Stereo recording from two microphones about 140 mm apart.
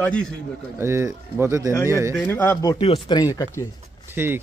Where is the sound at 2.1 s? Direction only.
15° left (ahead or behind).